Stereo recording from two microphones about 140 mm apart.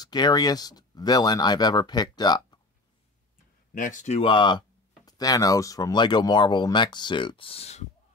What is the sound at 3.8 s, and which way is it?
Speech, 70° left (ahead or behind).